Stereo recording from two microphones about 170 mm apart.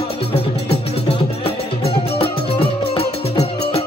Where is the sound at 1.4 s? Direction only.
35° left (ahead or behind).